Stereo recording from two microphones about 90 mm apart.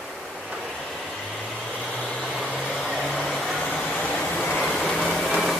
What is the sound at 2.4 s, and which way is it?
Vehicle, centre (ahead or behind).